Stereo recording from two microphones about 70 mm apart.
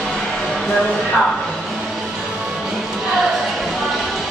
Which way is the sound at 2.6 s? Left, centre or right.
Centre.